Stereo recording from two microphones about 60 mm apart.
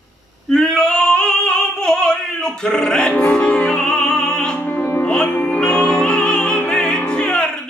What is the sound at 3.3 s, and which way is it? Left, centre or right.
Music, centre.